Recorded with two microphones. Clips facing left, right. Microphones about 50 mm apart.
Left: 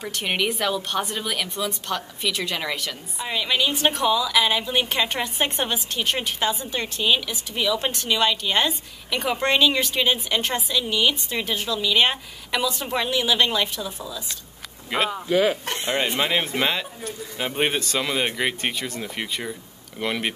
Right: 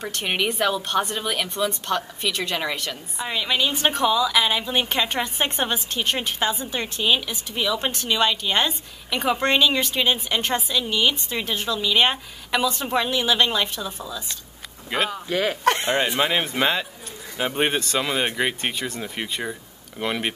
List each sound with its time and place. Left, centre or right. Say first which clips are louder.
0.0 s a woman's voice: even; centre
15.6 s speech: right 9 dB; right
16.2 s a woman's voice: right 1 dB; centre